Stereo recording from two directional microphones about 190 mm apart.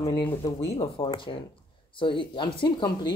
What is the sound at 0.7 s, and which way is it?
Speech, 30° left (ahead or behind).